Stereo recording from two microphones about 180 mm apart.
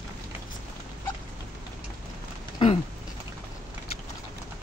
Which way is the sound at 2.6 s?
30° left (ahead or behind).